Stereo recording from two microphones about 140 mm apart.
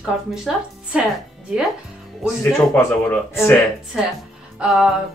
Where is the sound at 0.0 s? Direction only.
5° right (ahead or behind).